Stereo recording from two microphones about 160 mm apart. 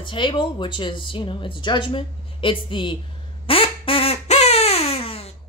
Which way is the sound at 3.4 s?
35° left (ahead or behind).